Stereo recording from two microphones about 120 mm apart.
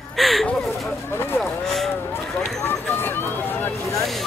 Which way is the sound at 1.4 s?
Centre (ahead or behind).